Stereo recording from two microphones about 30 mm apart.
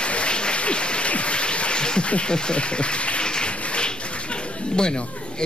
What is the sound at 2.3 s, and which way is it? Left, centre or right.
Speech, left.